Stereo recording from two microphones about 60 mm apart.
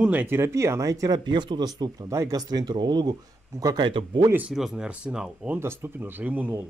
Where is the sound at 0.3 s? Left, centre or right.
Right.